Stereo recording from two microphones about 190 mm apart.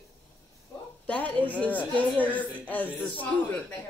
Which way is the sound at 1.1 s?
5° left (ahead or behind).